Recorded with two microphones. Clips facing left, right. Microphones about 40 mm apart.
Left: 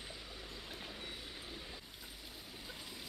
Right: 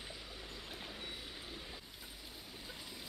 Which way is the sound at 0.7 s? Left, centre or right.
Centre.